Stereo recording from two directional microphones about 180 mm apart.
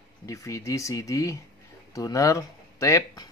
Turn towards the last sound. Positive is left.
turn(degrees=15)  # may be behind; listen again after turning